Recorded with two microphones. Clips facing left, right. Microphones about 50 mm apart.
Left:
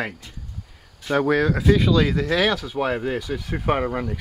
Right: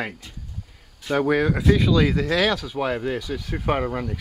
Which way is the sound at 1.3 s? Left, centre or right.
Centre.